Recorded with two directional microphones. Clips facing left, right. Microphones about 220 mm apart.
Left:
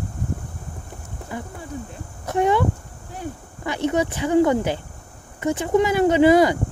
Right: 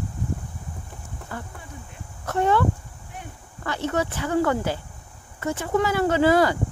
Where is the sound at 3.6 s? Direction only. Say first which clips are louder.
Left 4 dB; 15° left (ahead or behind).